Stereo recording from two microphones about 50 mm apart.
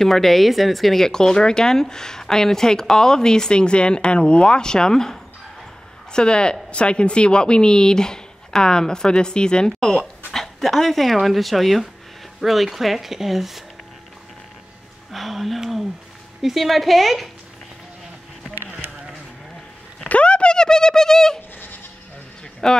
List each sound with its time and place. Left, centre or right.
0.0 s speech: centre
15.0 s speech: centre
18.8 s a sound: right
20.1 s speech: left
22.6 s speech: centre